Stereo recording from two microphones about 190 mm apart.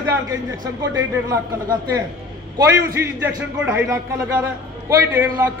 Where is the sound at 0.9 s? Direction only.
20° right (ahead or behind).